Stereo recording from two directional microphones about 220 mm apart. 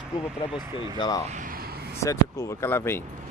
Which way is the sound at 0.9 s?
20° left (ahead or behind).